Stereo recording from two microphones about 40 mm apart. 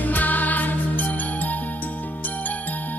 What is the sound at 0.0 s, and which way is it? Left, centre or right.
Music, left.